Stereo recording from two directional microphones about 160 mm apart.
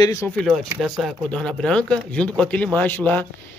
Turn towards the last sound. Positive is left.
turn(degrees=10)  # may be behind; listen again after turning